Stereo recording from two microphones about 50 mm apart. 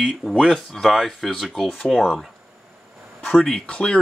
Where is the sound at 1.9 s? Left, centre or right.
Centre.